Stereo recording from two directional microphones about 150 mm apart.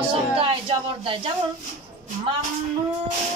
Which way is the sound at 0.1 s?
35° right (ahead or behind).